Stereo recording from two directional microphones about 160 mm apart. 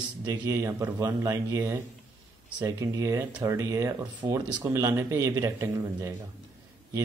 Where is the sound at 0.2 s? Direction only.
20° right (ahead or behind).